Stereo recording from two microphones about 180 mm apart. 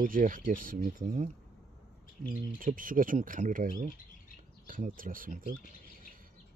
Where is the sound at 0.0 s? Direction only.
50° right (ahead or behind).